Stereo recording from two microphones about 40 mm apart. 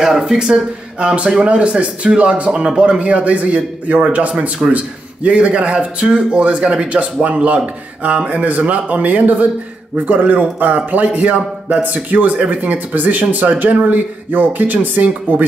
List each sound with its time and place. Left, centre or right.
0.0 s speech: centre
0.9 s a man's voice: right